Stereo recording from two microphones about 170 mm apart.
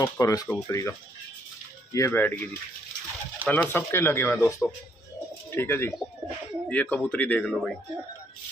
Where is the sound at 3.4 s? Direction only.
10° left (ahead or behind).